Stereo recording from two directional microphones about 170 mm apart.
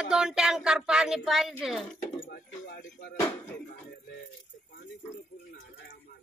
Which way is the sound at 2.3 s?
70° left (ahead or behind).